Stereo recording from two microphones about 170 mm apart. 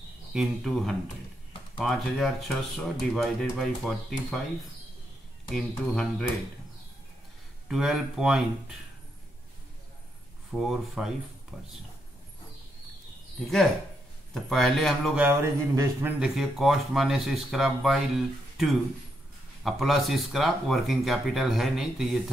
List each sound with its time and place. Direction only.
0.3 s speech: centre (ahead or behind)
5.5 s speech: centre (ahead or behind)
7.6 s speech: 5° right (ahead or behind)
10.5 s speech: 5° right (ahead or behind)
14.3 s speech: centre (ahead or behind)
15.2 s speech: 15° right (ahead or behind)
16.2 s speech: centre (ahead or behind)